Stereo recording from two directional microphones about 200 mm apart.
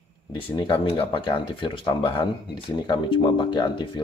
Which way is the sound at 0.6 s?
25° left (ahead or behind).